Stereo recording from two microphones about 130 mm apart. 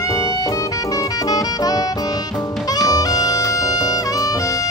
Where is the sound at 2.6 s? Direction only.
30° left (ahead or behind).